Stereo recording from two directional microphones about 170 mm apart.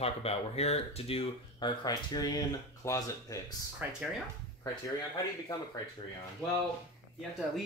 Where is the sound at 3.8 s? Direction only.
10° right (ahead or behind).